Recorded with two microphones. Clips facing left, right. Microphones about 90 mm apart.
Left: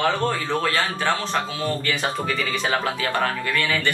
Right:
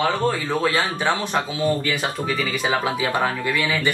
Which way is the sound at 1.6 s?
5° right (ahead or behind).